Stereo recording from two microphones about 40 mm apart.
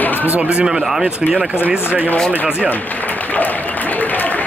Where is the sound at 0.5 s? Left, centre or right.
Right.